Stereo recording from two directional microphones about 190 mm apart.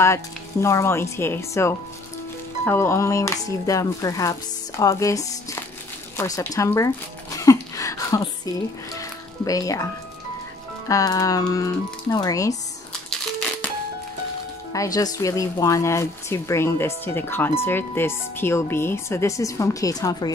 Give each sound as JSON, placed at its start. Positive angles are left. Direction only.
{"t": 0.0, "sound": "speech", "side_deg": 15}
{"t": 7.3, "sound": "music", "side_deg": 15}
{"t": 10.9, "sound": "speech", "side_deg": 20}
{"t": 14.7, "sound": "speech", "side_deg": 20}